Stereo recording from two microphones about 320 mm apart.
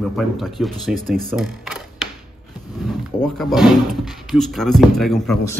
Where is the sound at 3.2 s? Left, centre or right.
Centre.